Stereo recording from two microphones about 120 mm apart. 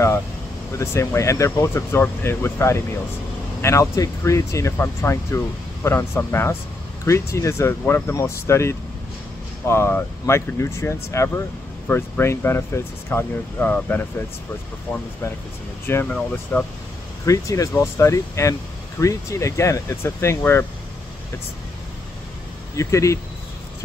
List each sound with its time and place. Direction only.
0.7 s speech: 25° left (ahead or behind)
17.2 s speech: 25° left (ahead or behind)
22.8 s speech: 25° left (ahead or behind)